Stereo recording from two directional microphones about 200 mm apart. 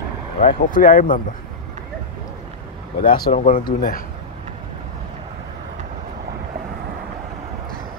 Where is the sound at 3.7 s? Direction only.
45° left (ahead or behind).